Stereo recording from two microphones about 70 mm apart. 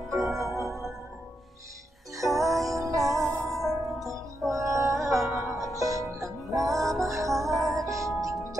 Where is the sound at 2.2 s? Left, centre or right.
Right.